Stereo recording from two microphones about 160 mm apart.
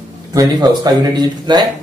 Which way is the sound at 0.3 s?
25° right (ahead or behind).